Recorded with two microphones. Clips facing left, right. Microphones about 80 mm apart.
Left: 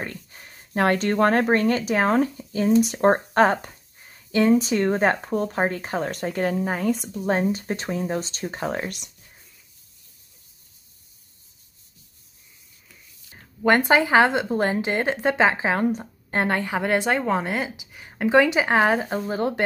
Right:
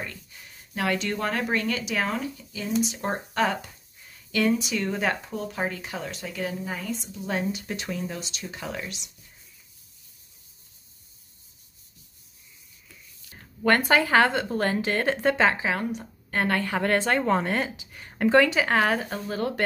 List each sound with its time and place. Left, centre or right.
0.0 s speech: left
7.2 s speech: left
13.3 s a woman's voice: left
15.6 s a woman's voice: left